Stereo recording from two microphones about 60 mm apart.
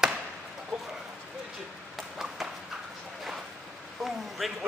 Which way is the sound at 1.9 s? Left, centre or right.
Centre.